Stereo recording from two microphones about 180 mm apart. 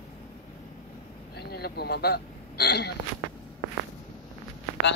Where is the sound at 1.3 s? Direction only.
65° left (ahead or behind).